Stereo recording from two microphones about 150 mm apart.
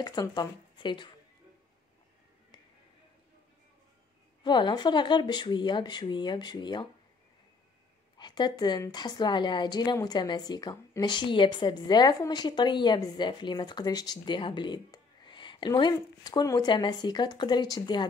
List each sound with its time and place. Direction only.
0.0 s a woman's voice: 25° left (ahead or behind)
4.4 s speech: 30° left (ahead or behind)
8.2 s a woman's voice: 30° left (ahead or behind)